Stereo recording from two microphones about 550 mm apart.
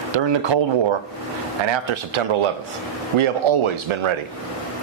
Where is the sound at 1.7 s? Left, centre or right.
Right.